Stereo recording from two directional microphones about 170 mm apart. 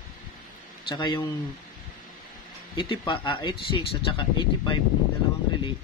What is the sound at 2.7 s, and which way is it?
Speech, 30° left (ahead or behind).